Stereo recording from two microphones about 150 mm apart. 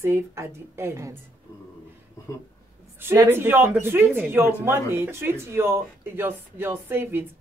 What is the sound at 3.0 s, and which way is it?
Speech, 15° right (ahead or behind).